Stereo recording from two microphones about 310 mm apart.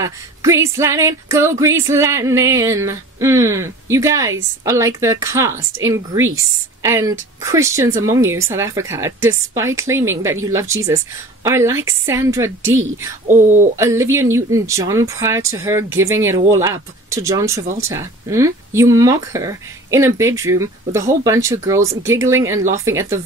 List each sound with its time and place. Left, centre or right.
0.0 s music: centre
6.1 s a woman's voice: right
6.8 s music: centre
13.7 s music: centre